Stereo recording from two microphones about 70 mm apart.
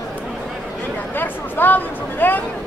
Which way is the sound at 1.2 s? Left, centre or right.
Left.